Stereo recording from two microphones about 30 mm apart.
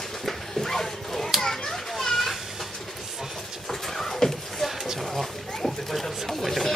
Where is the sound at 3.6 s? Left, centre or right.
Centre.